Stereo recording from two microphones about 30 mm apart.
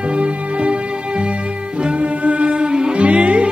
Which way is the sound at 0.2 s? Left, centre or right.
Right.